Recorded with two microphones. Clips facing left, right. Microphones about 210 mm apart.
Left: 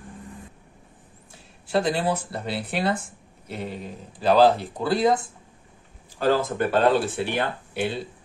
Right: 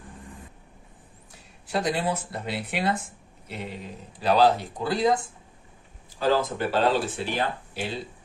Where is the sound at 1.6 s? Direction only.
30° left (ahead or behind).